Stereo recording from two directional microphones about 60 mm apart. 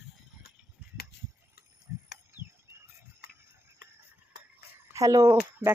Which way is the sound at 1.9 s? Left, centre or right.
Right.